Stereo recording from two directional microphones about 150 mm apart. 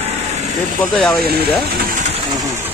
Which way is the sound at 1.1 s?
90° right.